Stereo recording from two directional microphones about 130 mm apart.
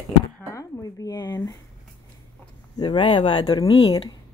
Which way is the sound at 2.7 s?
40° left (ahead or behind).